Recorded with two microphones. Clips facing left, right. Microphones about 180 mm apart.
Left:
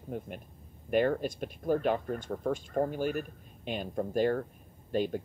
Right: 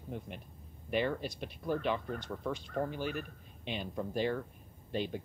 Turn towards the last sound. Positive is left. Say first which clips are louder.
# left 6 dB
turn(degrees=50)  # may be behind; listen again after turning